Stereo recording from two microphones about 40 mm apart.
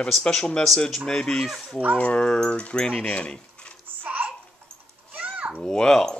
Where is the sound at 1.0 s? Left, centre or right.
Centre.